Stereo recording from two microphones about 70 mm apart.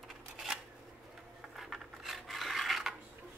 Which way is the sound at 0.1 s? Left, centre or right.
Centre.